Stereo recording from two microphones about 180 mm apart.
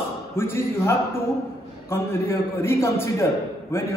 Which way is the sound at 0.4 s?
15° left (ahead or behind).